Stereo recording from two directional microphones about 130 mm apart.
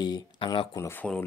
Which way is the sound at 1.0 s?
10° left (ahead or behind).